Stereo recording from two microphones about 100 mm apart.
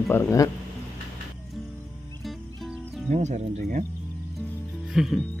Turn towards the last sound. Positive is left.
turn(degrees=-5)  # may be behind; listen again after turning